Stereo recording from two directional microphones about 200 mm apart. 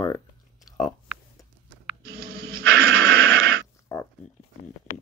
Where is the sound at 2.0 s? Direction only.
50° right (ahead or behind).